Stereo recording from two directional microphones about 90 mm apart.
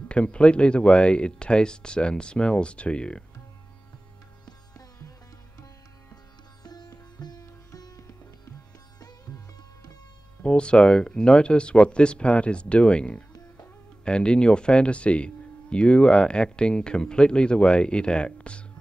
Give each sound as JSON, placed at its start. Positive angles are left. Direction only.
{"t": 0.1, "sound": "speech", "side_deg": 10}
{"t": 4.5, "sound": "music", "side_deg": 45}
{"t": 6.6, "sound": "music", "side_deg": 50}
{"t": 10.4, "sound": "speech", "side_deg": 10}